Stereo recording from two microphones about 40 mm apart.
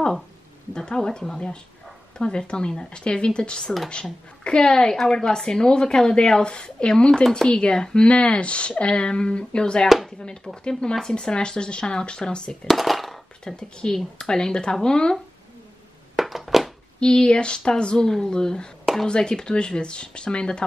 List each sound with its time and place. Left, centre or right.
0.7 s speech: left
9.8 s speech: centre
10.1 s speech: left
12.6 s a sound: centre
13.4 s speech: left
16.2 s a sound: centre
17.0 s speech: left